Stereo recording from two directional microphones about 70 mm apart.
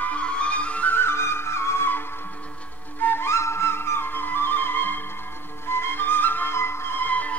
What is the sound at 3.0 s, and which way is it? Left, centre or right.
Music, left.